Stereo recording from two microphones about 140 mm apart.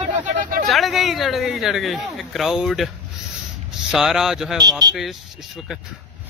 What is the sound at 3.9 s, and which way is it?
Speech, 5° right (ahead or behind).